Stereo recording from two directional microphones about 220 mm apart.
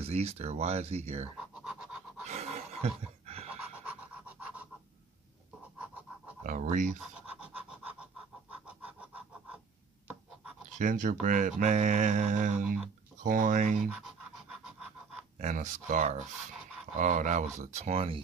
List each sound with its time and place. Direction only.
0.0 s speech: 30° right (ahead or behind)
1.5 s a sound: 5° right (ahead or behind)
2.2 s dog: 30° right (ahead or behind)
3.8 s pant: 5° right (ahead or behind)
6.4 s speech: 35° right (ahead or behind)
7.2 s sawing: 5° right (ahead or behind)
8.5 s a sound: 5° right (ahead or behind)
10.8 s speech: 35° right (ahead or behind)
15.3 s speech: 35° right (ahead or behind)